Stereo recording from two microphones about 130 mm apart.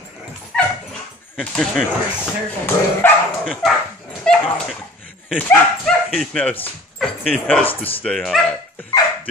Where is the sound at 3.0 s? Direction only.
15° left (ahead or behind).